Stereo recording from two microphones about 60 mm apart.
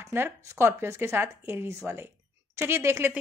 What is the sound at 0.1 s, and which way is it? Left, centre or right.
Speech, right.